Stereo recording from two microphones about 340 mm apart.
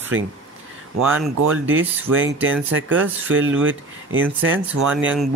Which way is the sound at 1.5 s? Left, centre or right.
Right.